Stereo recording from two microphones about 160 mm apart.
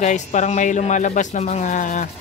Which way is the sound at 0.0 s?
50° left (ahead or behind).